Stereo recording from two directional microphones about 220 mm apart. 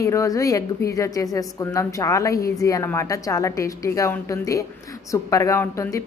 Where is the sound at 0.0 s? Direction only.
15° left (ahead or behind).